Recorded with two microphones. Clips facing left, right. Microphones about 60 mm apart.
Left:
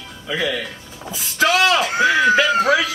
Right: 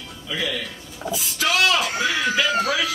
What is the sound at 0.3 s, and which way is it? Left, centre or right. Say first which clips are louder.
A woman's voice: left 5 dB; left.